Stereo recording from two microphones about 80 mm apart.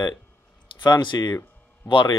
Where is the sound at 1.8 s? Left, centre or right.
Left.